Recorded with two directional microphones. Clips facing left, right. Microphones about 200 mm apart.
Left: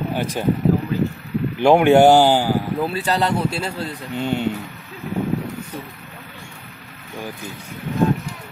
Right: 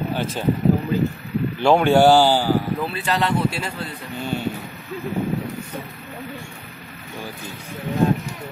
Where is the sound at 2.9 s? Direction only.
35° left (ahead or behind).